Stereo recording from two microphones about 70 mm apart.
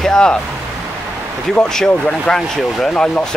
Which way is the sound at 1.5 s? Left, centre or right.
Centre.